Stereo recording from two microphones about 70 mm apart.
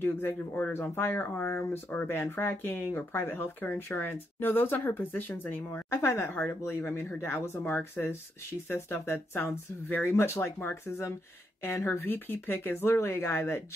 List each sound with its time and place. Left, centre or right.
0.0 s speech: left